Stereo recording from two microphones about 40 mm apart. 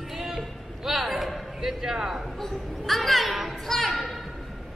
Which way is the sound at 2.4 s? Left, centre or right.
Centre.